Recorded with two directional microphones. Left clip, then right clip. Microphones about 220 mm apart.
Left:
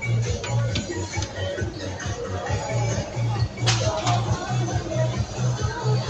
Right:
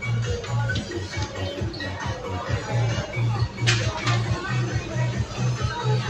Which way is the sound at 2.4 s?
Centre (ahead or behind).